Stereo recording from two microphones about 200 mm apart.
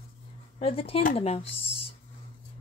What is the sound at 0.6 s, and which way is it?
Speech, 30° left (ahead or behind).